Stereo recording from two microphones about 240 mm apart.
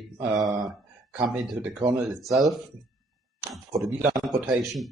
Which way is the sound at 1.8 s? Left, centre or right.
Centre.